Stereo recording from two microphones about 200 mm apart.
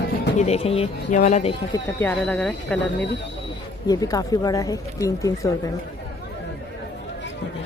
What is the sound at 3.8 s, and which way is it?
Speech, 20° left (ahead or behind).